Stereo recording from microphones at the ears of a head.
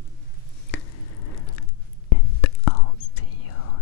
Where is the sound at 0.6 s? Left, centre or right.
Left.